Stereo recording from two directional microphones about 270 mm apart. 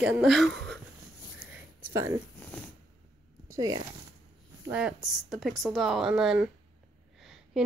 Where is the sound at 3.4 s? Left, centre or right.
Centre.